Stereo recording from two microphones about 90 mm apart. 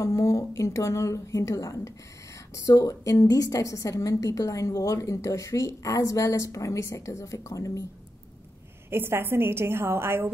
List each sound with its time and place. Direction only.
0.0 s a woman's voice: 35° left (ahead or behind)
8.9 s a woman's voice: 25° right (ahead or behind)